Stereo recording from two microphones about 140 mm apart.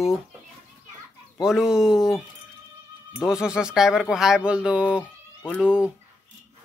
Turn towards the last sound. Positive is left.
turn(degrees=-5)  # may be behind; listen again after turning